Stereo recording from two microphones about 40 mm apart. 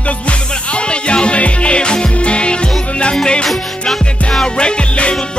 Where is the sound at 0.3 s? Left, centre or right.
Left.